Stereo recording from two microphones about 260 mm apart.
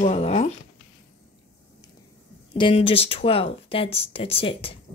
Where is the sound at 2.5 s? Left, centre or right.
Left.